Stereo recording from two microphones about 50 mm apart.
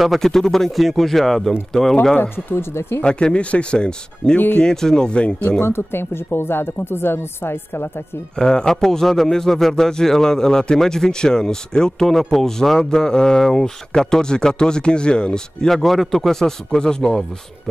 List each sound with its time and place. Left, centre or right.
0.0 s speech: centre
2.1 s speech: left
3.0 s speech: centre
5.6 s speech: left
8.4 s speech: centre